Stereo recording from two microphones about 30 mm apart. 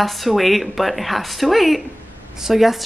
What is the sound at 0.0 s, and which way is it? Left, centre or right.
A woman's voice, centre.